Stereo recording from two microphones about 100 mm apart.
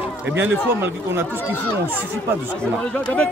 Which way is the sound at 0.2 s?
20° right (ahead or behind).